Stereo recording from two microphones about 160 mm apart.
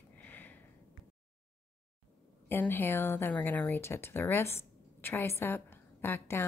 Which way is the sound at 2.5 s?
15° left (ahead or behind).